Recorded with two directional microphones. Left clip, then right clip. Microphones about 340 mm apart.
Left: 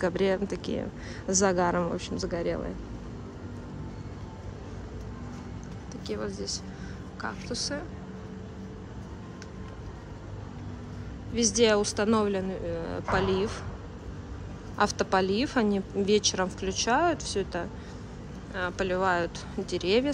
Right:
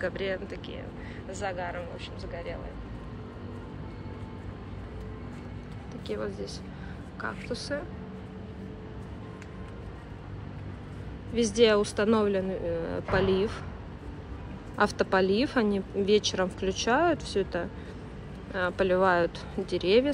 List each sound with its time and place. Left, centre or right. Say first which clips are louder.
0.0 s speech: left 5 dB; centre
6.0 s a woman's voice: left 1 dB; centre
11.3 s a woman's voice: right 1 dB; centre
14.8 s a woman's voice: even; centre